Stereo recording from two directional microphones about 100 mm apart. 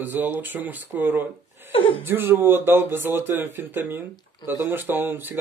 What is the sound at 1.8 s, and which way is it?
Chuckle, 60° left (ahead or behind).